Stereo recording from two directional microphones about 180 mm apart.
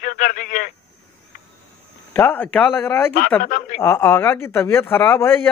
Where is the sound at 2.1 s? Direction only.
10° left (ahead or behind).